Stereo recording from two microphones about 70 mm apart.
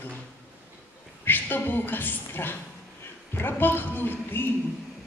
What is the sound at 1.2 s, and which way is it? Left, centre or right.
A woman's voice, left.